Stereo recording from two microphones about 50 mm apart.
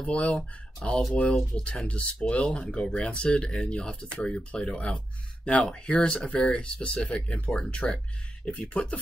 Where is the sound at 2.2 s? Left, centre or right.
Left.